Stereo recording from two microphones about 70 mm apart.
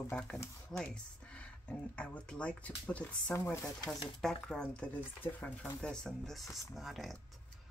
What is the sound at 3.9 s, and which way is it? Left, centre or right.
Speech, centre.